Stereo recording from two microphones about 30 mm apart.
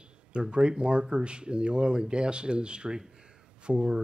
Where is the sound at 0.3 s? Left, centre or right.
Right.